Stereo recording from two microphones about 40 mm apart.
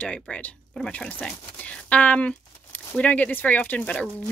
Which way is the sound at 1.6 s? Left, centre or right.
Left.